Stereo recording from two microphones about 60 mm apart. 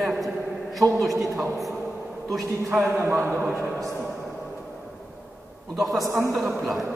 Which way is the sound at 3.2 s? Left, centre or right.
Right.